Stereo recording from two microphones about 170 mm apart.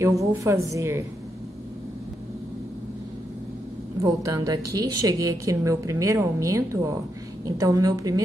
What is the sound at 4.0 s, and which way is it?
A woman's voice, 20° right (ahead or behind).